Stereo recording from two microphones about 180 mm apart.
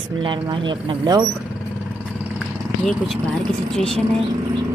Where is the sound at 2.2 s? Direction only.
5° left (ahead or behind).